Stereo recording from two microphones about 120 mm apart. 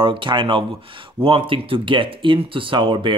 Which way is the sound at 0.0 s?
45° right (ahead or behind).